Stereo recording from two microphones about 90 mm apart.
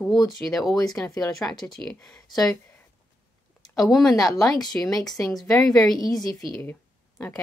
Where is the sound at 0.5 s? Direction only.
Centre (ahead or behind).